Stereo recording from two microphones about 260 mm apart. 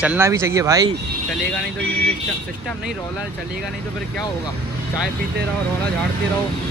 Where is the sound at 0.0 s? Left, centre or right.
Centre.